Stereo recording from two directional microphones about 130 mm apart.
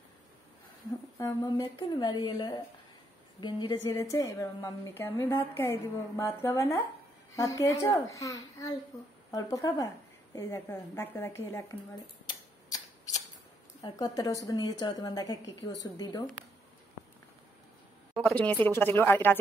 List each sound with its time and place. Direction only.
1.1 s a woman's voice: 25° left (ahead or behind)
3.8 s a woman's voice: 25° left (ahead or behind)
12.3 s a sound: 30° left (ahead or behind)
13.8 s a woman's voice: 30° left (ahead or behind)
18.1 s speech: 5° left (ahead or behind)